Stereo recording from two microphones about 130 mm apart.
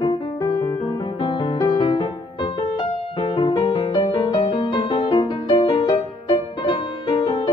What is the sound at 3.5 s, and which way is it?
Music, 35° left (ahead or behind).